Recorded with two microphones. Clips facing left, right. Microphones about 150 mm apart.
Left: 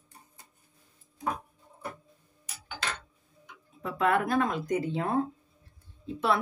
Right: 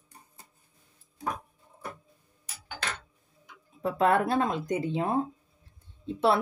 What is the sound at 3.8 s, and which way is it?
Speech, 30° right (ahead or behind).